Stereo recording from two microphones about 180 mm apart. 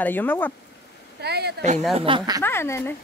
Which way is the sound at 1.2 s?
65° right (ahead or behind).